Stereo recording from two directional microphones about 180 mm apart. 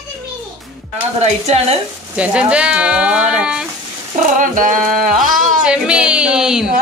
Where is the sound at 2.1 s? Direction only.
5° right (ahead or behind).